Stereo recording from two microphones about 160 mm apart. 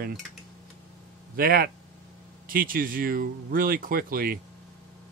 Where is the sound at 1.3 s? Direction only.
70° right (ahead or behind).